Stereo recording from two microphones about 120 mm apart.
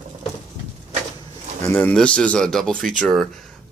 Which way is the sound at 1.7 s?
15° left (ahead or behind).